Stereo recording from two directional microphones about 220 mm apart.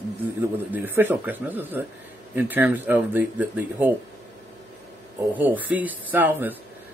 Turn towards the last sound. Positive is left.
turn(degrees=-10)  # may be behind; listen again after turning